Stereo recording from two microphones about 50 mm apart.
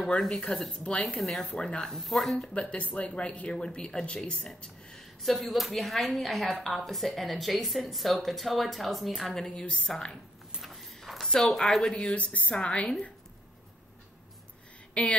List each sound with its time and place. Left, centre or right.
0.2 s speech: centre
1.1 s speech: centre
1.5 s speech: centre
1.9 s a woman's voice: centre
2.5 s speech: left
4.6 s a sound: centre
5.2 s a woman's voice: centre
9.6 s speech: centre
10.6 s a sound: centre
12.0 s speech: left
15.0 s a sound: left